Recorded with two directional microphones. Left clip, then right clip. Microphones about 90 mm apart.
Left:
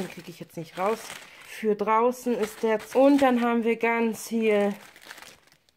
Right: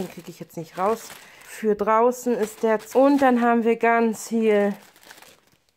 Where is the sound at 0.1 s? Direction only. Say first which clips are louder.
Right 2 dB; 45° right (ahead or behind).